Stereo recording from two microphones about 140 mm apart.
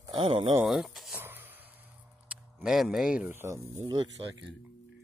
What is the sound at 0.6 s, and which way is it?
Speech, centre (ahead or behind).